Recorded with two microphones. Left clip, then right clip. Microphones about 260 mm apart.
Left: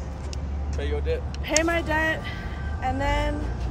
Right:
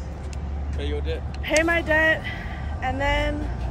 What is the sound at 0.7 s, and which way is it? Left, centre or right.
Speech, left.